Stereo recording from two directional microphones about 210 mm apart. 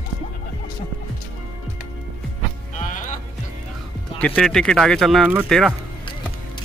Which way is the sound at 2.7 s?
35° left (ahead or behind).